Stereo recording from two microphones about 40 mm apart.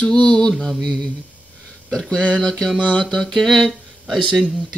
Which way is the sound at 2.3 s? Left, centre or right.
Centre.